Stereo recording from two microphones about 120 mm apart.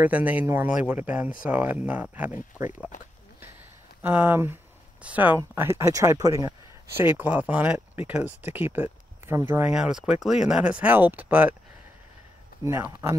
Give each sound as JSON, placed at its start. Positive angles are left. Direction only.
{"t": 0.0, "sound": "speech", "side_deg": -15}
{"t": 4.0, "sound": "speech", "side_deg": -15}
{"t": 7.0, "sound": "speech", "side_deg": -15}
{"t": 9.8, "sound": "speech", "side_deg": -5}
{"t": 12.6, "sound": "speech", "side_deg": -20}